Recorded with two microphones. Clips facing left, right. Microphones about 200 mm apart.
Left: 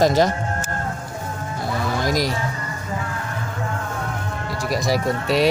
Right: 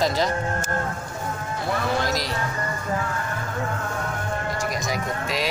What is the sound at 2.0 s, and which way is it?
Speech, 45° left (ahead or behind).